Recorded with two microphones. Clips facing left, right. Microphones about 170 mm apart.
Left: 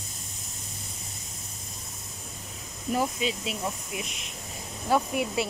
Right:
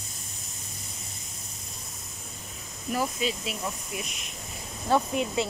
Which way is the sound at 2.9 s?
20° left (ahead or behind).